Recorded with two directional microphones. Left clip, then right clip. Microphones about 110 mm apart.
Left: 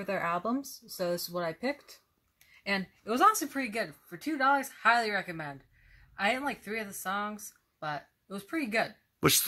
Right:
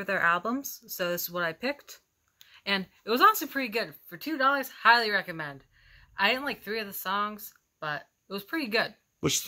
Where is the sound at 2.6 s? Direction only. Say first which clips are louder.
Right 3 dB; centre (ahead or behind).